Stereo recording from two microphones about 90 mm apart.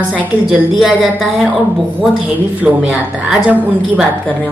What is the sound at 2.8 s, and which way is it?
A woman's voice, 10° right (ahead or behind).